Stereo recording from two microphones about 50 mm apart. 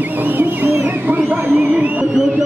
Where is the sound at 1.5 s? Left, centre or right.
Right.